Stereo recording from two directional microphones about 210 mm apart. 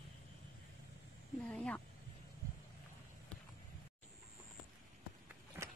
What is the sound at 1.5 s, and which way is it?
Vehicle, 5° left (ahead or behind).